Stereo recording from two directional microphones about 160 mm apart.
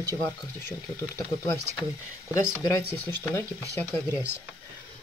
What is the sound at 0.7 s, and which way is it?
Speech, 20° left (ahead or behind).